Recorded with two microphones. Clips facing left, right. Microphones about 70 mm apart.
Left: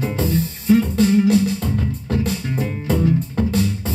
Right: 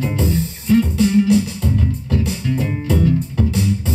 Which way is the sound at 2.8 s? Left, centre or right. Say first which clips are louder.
Even; left.